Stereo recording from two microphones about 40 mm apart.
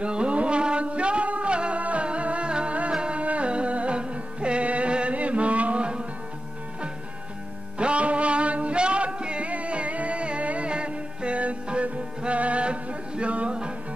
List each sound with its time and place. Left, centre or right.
0.0 s music: right
3.2 s music: right
7.8 s music: right